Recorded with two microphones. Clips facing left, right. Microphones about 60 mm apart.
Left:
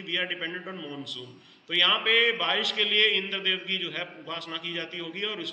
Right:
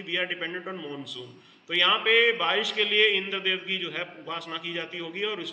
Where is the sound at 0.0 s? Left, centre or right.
Centre.